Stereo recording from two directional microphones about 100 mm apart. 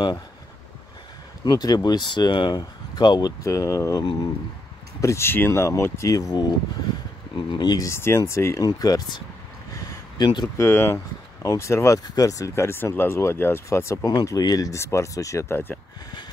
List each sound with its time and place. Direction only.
1.4 s speech: 45° left (ahead or behind)
4.0 s speech: 45° left (ahead or behind)
5.0 s speech: 25° left (ahead or behind)
10.1 s speech: 45° left (ahead or behind)
10.6 s speech: 25° left (ahead or behind)
14.0 s speech: 40° left (ahead or behind)